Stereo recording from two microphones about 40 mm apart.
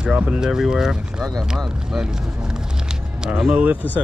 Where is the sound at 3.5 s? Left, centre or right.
Right.